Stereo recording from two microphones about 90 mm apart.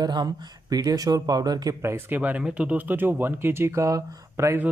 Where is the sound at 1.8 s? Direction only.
30° right (ahead or behind).